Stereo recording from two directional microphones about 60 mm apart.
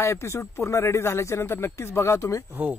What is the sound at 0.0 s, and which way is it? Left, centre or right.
Speech, left.